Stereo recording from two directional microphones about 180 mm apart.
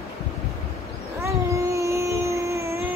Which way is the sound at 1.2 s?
15° right (ahead or behind).